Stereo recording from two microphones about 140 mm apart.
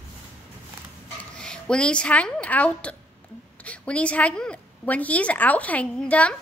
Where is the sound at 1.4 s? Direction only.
5° left (ahead or behind).